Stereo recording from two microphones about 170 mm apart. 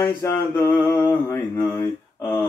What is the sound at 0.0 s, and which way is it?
Mantra, 15° left (ahead or behind).